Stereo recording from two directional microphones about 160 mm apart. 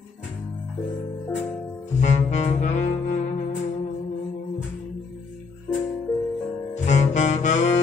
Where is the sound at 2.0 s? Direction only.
50° left (ahead or behind).